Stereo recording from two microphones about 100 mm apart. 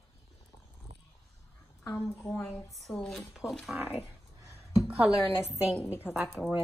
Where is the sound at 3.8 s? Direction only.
20° right (ahead or behind).